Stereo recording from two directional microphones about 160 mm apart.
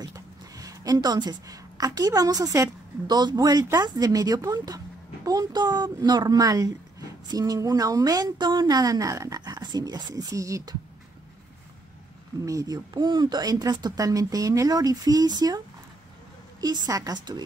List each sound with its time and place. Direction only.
0.0 s a woman's voice: 20° right (ahead or behind)
12.4 s a woman's voice: 20° right (ahead or behind)
16.6 s a woman's voice: 20° right (ahead or behind)